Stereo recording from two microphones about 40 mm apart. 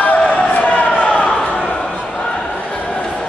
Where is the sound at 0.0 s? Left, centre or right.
Left.